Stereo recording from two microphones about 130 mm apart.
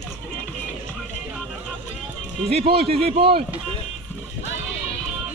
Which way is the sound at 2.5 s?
50° right (ahead or behind).